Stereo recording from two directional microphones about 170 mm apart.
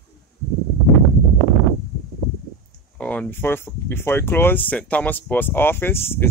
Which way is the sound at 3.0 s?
10° left (ahead or behind).